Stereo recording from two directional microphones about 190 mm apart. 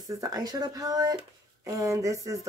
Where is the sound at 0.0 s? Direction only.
20° right (ahead or behind).